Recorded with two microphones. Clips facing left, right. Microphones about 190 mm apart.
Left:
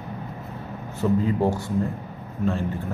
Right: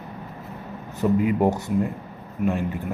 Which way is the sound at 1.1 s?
15° right (ahead or behind).